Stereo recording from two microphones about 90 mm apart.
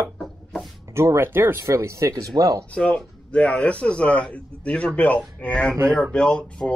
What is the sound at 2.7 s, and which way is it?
A man's voice, 10° left (ahead or behind).